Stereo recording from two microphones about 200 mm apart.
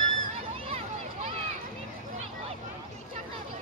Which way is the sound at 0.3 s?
30° right (ahead or behind).